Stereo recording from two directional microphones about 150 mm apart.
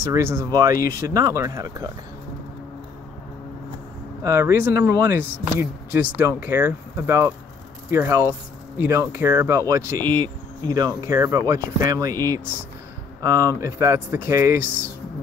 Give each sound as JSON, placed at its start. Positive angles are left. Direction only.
{"t": 0.0, "sound": "speech", "side_deg": -20}
{"t": 4.2, "sound": "speech", "side_deg": -20}